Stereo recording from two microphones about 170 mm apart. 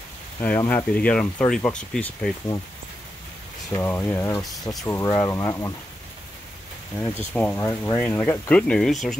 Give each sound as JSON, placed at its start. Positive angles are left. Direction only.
{"t": 0.4, "sound": "speech", "side_deg": 10}
{"t": 3.7, "sound": "speech", "side_deg": 15}
{"t": 7.0, "sound": "speech", "side_deg": 10}